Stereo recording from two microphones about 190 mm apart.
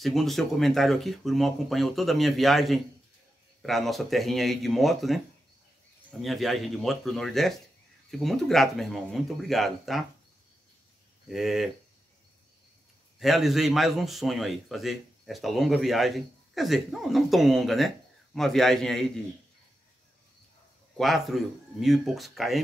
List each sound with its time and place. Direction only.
0.0 s speech: centre (ahead or behind)
6.2 s speech: centre (ahead or behind)
11.2 s speech: centre (ahead or behind)
13.2 s speech: centre (ahead or behind)
21.0 s speech: centre (ahead or behind)